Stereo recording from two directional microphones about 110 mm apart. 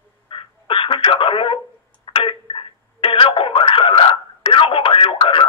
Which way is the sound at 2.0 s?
50° left (ahead or behind).